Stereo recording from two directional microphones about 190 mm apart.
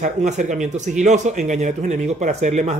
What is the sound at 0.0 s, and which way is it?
Speech, 40° right (ahead or behind).